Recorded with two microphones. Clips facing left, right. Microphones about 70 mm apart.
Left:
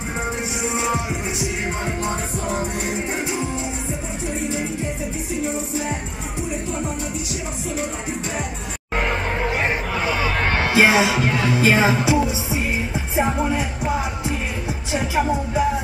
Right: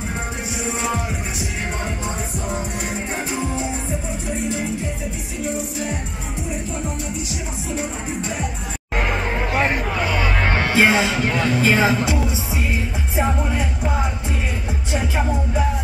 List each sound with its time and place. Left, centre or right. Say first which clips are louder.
0.7 s music: left 2 dB; centre
9.9 s music: even; centre
10.3 s speech: left 1 dB; centre
13.1 s music: left 1 dB; centre